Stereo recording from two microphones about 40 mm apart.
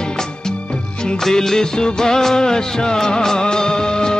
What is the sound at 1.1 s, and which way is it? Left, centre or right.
Music of bollywood, centre.